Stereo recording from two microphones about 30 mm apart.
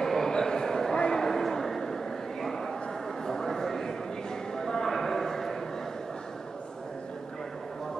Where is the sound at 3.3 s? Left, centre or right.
Centre.